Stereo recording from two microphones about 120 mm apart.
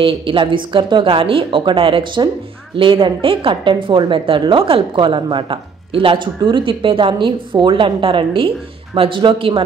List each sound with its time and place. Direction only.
0.0 s a woman's voice: 45° right (ahead or behind)